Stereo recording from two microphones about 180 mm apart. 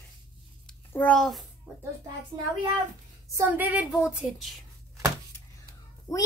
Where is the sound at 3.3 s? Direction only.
10° right (ahead or behind).